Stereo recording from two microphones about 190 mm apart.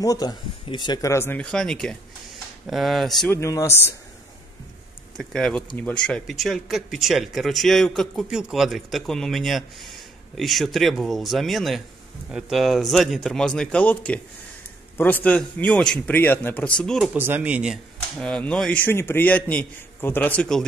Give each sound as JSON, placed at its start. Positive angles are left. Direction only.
{"t": 0.0, "sound": "speech", "side_deg": 20}
{"t": 3.3, "sound": "speech", "side_deg": 15}
{"t": 5.1, "sound": "speech", "side_deg": 5}
{"t": 18.2, "sound": "speech", "side_deg": 5}